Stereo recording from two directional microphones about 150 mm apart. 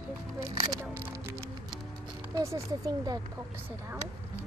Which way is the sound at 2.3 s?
20° right (ahead or behind).